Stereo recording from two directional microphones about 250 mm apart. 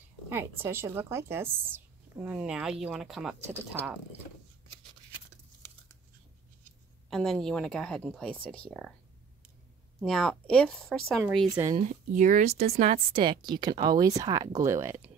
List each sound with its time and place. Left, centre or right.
0.3 s a woman's voice: centre
7.1 s speech: centre
9.9 s speech: centre
11.5 s a woman's voice: centre
11.8 s a woman's voice: right; by 15.0 s centre